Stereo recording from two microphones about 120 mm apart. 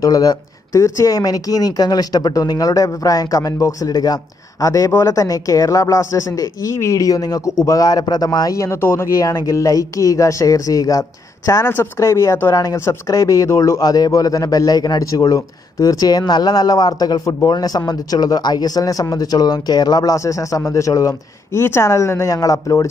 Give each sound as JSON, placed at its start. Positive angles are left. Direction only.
{"t": 0.0, "sound": "a man's voice", "side_deg": 30}